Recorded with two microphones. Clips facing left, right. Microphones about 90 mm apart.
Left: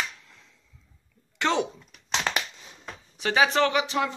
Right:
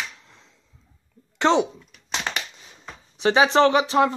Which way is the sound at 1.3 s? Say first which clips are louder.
Right 6 dB; 25° right (ahead or behind).